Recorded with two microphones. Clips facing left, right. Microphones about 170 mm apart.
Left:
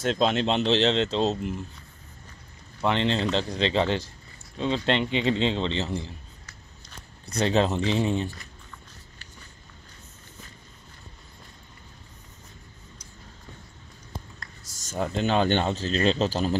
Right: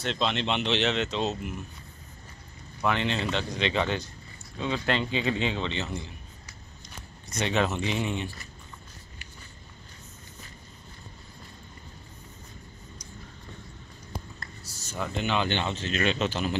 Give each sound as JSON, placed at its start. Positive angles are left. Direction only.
{"t": 0.0, "sound": "speech", "side_deg": 45}
{"t": 2.8, "sound": "a man's voice", "side_deg": 25}
{"t": 7.2, "sound": "speech", "side_deg": 35}
{"t": 14.6, "sound": "speech", "side_deg": 45}